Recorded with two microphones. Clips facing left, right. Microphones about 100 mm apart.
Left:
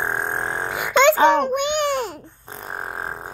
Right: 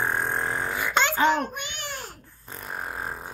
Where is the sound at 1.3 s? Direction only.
70° left (ahead or behind).